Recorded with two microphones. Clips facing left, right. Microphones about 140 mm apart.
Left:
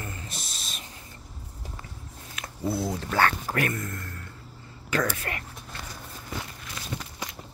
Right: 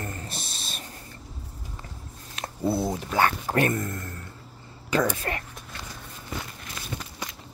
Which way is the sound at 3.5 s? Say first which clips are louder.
Right 4 dB; 30° right (ahead or behind).